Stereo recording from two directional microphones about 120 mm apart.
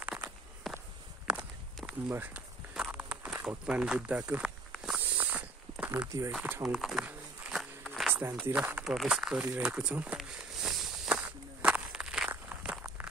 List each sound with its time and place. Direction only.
0.1 s walk: 5° right (ahead or behind)
3.4 s speech: 5° right (ahead or behind)
4.8 s snake: 10° right (ahead or behind)
6.6 s a sound: 5° right (ahead or behind)
8.1 s a sound: 20° right (ahead or behind)
8.5 s speech: 15° right (ahead or behind)
9.4 s walk: 10° right (ahead or behind)